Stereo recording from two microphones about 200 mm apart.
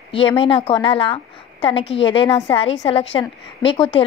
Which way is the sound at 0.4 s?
25° left (ahead or behind).